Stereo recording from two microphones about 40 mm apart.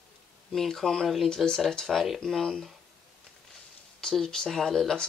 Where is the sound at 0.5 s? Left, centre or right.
Centre.